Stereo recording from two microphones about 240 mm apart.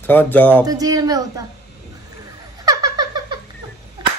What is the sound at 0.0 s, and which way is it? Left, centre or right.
Speech, centre.